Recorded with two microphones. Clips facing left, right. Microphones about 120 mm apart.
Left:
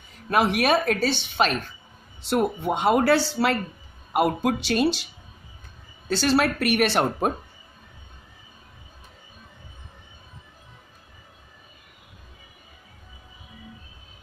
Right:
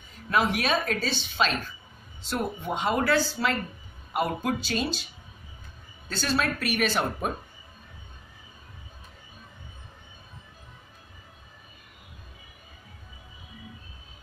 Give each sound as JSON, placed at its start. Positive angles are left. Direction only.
{"t": 0.3, "sound": "speech", "side_deg": 65}
{"t": 6.0, "sound": "speech", "side_deg": 70}